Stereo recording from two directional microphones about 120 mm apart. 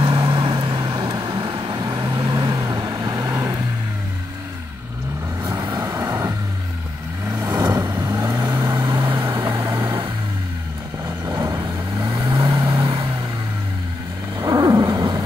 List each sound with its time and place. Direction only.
0.0 s vehicle: 45° right (ahead or behind); by 3.6 s 25° right (ahead or behind)
5.6 s vehicle: 30° right (ahead or behind)
9.5 s vehicle: 25° right (ahead or behind)
11.1 s vehicle: 30° right (ahead or behind)
14.4 s wild animals: 30° right (ahead or behind)